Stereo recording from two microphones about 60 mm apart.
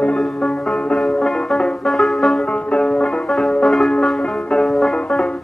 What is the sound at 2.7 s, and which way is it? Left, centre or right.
Music, centre.